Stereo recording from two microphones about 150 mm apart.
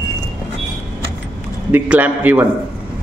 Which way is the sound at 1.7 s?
10° right (ahead or behind).